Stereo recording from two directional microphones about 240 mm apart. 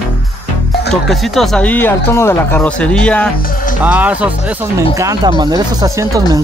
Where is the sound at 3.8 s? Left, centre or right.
Centre.